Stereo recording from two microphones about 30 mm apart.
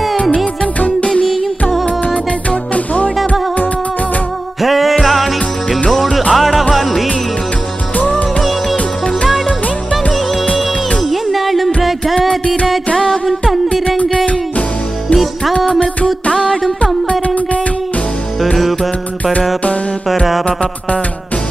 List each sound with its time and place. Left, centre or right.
0.7 s music: left
2.7 s music: left
4.6 s music: centre
8.7 s music: left
11.1 s music: centre
16.3 s music: left